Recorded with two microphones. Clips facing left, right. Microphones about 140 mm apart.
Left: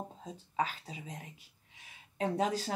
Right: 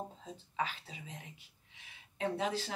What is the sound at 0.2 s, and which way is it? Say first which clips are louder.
Speech: left 5 dB; 40° left (ahead or behind).